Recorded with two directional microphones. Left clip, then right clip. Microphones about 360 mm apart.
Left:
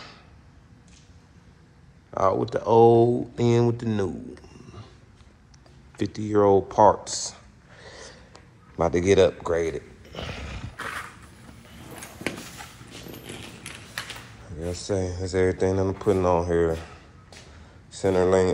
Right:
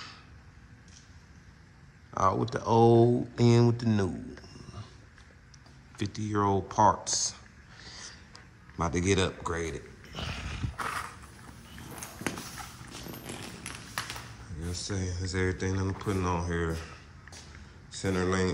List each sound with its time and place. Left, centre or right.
2.0 s speech: centre
5.9 s speech: centre
8.1 s a sound: centre
10.8 s vehicle: centre
13.1 s a sound: centre
14.6 s speech: centre